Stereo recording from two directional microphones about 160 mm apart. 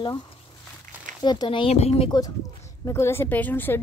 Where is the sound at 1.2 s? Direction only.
25° left (ahead or behind).